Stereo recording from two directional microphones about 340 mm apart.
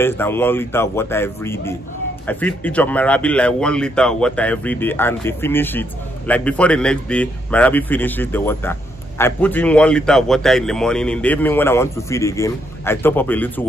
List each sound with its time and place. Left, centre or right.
0.0 s a man's voice: centre